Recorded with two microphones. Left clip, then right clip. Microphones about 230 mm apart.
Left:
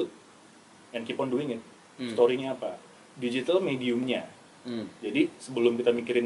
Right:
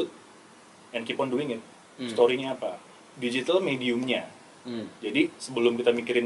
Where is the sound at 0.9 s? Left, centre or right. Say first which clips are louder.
Right 3 dB; centre.